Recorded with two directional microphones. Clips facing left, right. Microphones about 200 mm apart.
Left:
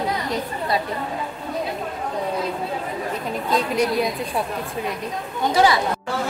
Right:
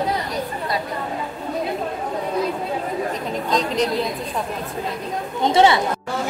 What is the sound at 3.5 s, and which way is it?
Speech, 10° left (ahead or behind).